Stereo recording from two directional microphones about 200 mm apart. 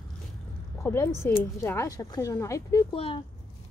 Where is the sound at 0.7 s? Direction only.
15° left (ahead or behind).